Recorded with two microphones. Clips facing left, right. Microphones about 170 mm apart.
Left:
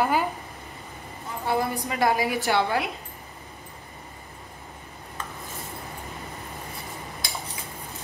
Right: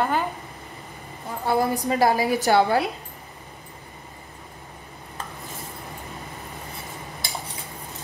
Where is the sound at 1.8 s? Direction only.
35° right (ahead or behind).